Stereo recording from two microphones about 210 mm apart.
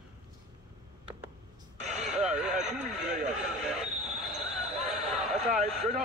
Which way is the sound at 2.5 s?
35° right (ahead or behind).